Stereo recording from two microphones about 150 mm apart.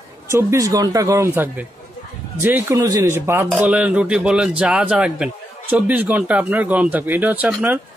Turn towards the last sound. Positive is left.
turn(degrees=-10)  # may be behind; listen again after turning